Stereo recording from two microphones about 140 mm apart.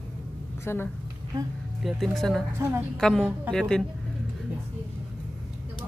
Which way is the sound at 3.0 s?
5° left (ahead or behind).